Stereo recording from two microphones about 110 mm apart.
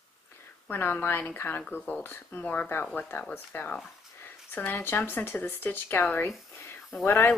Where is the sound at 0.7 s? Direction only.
20° left (ahead or behind).